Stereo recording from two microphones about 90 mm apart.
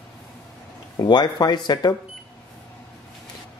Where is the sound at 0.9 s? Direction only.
50° left (ahead or behind).